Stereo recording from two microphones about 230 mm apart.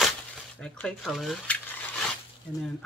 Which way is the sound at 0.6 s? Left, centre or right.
Centre.